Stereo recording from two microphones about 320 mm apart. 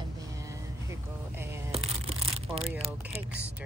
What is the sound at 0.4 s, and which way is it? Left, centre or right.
Music, centre.